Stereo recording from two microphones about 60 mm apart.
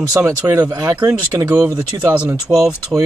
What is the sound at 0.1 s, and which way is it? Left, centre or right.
Speech, right.